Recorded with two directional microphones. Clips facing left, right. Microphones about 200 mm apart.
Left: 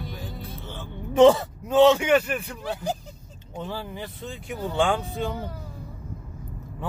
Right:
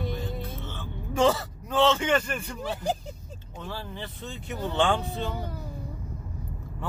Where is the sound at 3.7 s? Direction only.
10° left (ahead or behind).